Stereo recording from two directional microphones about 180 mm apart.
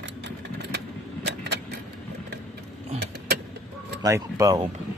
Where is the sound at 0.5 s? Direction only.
70° right (ahead or behind).